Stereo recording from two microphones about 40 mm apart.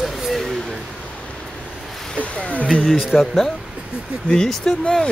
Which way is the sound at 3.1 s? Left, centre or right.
Centre.